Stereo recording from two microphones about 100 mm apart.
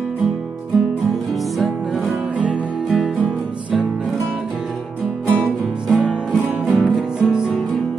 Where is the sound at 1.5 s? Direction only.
Centre (ahead or behind).